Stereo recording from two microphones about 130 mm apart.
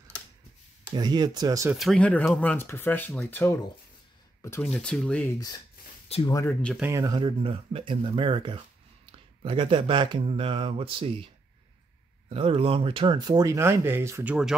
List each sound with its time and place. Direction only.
0.9 s speech: 30° right (ahead or behind)
1.8 s speech: 5° left (ahead or behind)
4.6 s speech: 5° left (ahead or behind)
6.1 s speech: 50° left (ahead or behind)
6.4 s speech: 10° left (ahead or behind)
6.8 s speech: 25° right (ahead or behind)
7.2 s speech: 40° right (ahead or behind)
12.3 s speech: 45° right (ahead or behind); by 14.3 s 20° right (ahead or behind)